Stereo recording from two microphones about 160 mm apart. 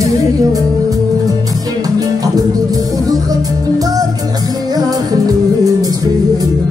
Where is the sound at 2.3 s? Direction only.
25° right (ahead or behind).